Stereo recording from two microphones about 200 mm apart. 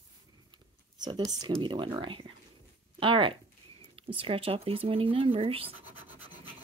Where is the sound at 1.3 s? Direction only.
20° right (ahead or behind).